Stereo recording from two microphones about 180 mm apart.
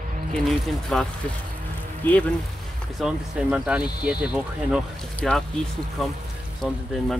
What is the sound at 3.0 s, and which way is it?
Speech, 5° right (ahead or behind).